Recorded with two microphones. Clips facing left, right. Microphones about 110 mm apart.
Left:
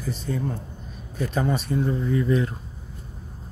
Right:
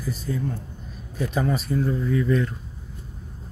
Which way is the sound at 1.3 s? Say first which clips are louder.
Even; centre (ahead or behind).